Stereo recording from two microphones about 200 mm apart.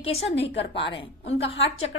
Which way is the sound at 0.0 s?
30° left (ahead or behind).